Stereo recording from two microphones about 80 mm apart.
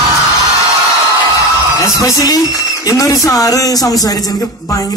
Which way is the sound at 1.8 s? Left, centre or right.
Left.